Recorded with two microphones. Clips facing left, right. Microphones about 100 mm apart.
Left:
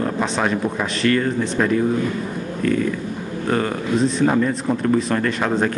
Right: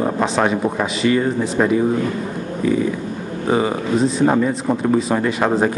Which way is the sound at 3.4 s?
10° right (ahead or behind).